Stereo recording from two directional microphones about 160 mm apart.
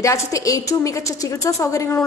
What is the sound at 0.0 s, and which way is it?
A woman's voice, 20° left (ahead or behind).